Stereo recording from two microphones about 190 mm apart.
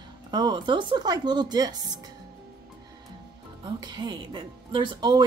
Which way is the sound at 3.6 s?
20° right (ahead or behind).